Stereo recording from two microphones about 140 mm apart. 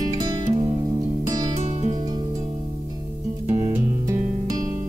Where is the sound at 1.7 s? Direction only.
50° right (ahead or behind).